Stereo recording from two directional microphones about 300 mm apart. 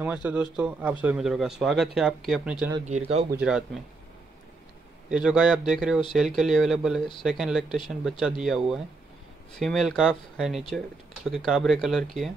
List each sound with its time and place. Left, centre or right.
0.0 s speech: centre
2.8 s speech: right
3.3 s speech: centre
5.1 s speech: centre